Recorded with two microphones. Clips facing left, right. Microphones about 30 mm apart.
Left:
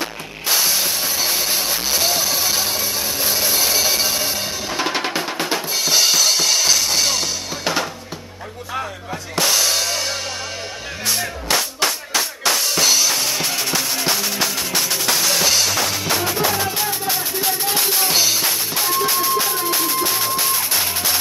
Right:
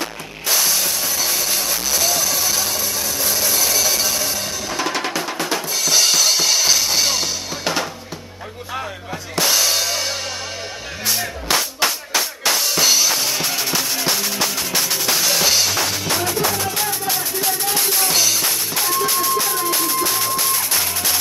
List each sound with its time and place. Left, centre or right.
0.0 s mechanisms: centre
5.2 s drum kit: centre
9.3 s music: centre
15.2 s drum kit: centre
16.2 s music: centre